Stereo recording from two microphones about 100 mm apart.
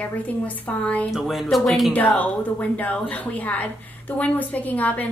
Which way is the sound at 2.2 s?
15° left (ahead or behind).